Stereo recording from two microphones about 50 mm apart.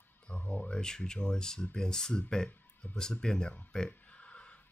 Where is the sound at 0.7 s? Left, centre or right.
Centre.